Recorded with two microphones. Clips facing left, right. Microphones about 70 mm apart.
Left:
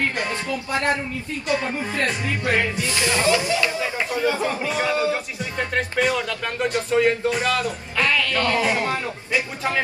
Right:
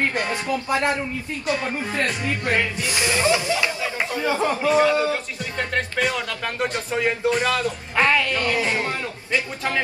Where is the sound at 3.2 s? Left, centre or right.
Right.